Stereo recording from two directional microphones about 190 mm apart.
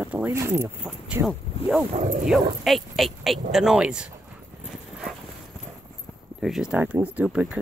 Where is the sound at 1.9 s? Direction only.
40° right (ahead or behind).